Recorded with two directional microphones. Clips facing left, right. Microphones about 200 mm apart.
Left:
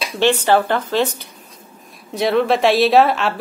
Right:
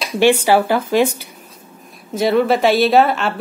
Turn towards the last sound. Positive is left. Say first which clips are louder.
# even
turn(degrees=0)  # may be behind; listen again after turning